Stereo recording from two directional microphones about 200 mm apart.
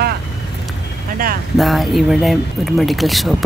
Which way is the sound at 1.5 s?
Centre (ahead or behind).